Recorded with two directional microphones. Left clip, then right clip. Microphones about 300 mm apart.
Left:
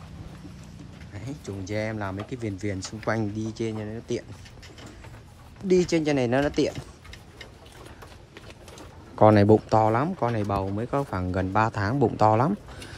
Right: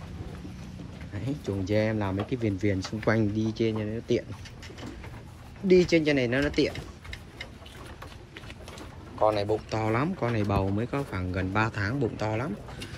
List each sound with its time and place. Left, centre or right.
1.1 s speech: centre
5.7 s speech: centre
9.3 s speech: left
9.8 s speech: centre